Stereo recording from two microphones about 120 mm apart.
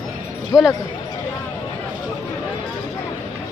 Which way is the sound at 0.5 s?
25° left (ahead or behind).